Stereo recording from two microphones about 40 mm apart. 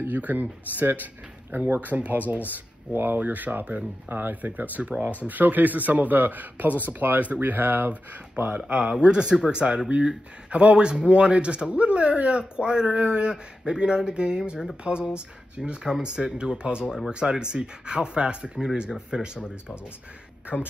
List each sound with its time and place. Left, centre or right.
0.1 s a man's voice: right
2.5 s speech: right
3.2 s a man's voice: right
8.5 s speech: right